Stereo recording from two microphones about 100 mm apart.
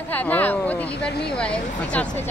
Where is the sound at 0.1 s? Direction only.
15° left (ahead or behind).